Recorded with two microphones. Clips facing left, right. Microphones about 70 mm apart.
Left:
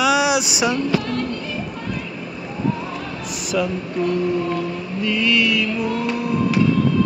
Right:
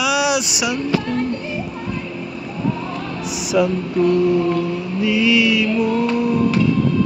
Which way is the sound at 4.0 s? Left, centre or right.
Centre.